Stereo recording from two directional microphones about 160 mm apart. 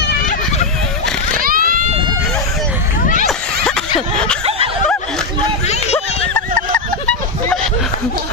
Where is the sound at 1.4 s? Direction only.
65° right (ahead or behind).